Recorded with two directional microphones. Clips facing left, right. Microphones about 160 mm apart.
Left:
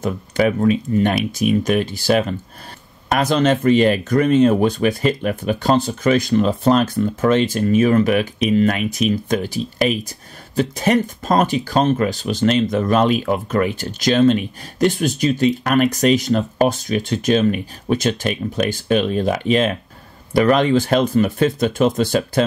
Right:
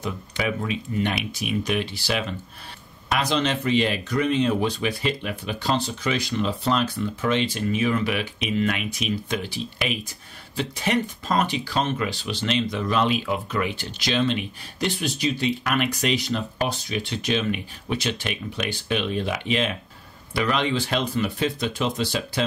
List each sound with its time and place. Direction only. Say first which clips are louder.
0.0 s speech: left 9 dB; 45° left (ahead or behind)